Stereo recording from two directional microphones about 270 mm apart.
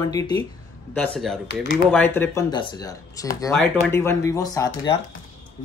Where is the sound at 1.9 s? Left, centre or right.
Centre.